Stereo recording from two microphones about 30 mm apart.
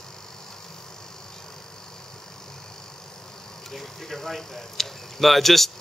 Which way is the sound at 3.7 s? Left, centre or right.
Centre.